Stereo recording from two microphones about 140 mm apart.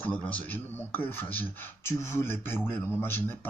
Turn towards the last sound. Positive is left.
turn(degrees=15)  # may be behind; listen again after turning